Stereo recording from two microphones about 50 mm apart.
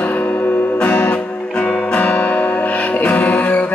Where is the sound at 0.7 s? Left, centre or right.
Left.